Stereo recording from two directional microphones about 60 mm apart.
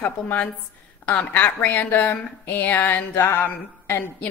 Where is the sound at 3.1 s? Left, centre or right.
Left.